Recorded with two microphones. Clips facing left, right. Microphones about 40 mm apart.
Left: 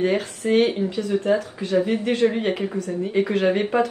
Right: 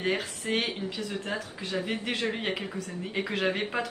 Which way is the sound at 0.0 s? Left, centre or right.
Centre.